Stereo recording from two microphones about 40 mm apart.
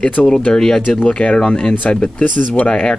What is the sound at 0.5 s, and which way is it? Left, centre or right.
Speech, centre.